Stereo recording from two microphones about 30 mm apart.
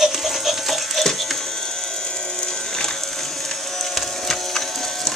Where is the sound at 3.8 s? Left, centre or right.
Centre.